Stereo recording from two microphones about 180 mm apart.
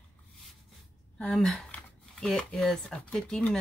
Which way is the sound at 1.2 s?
5° left (ahead or behind).